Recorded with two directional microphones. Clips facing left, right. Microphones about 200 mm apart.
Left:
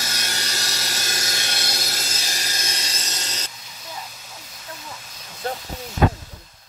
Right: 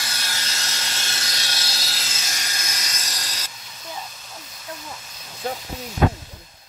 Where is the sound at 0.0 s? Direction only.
45° left (ahead or behind).